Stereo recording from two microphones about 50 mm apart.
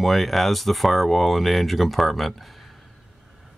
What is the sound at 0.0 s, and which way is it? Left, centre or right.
Speech, centre.